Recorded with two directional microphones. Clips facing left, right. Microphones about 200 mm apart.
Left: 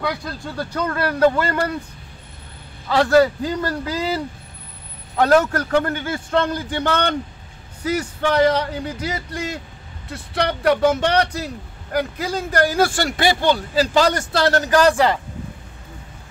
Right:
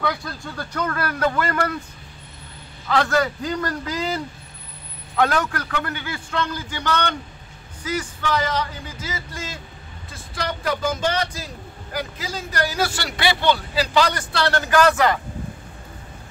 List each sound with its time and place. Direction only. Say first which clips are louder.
0.6 s speech: left 3 dB; 30° left (ahead or behind)
2.9 s a man's voice: left 6 dB; 30° left (ahead or behind)
5.2 s a man's voice: left 6 dB; 40° left (ahead or behind)